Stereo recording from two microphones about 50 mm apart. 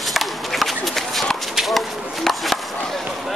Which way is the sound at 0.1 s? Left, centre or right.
Centre.